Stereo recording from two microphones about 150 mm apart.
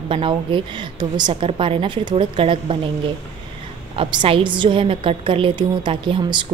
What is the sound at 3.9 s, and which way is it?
A woman's voice, 35° right (ahead or behind).